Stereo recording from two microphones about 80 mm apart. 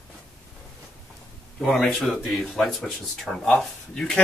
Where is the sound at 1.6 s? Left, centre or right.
Centre.